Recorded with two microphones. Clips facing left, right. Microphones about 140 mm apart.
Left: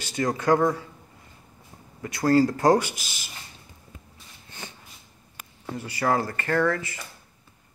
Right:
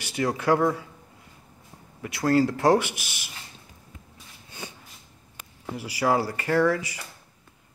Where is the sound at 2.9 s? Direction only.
65° right (ahead or behind).